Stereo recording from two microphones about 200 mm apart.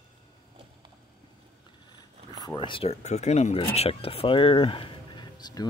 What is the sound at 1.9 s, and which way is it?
Speech, 20° left (ahead or behind).